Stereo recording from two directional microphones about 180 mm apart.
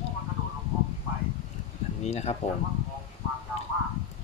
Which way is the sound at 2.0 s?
35° left (ahead or behind).